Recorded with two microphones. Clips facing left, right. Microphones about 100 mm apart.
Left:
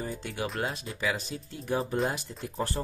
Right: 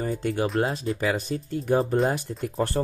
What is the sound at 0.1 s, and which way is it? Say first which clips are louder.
Speech: right 9 dB; 40° right (ahead or behind).